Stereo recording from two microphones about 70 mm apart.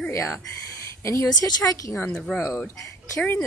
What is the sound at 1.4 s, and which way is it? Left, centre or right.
Speech, left.